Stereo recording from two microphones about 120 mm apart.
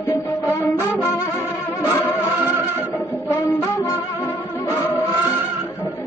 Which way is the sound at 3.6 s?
20° left (ahead or behind).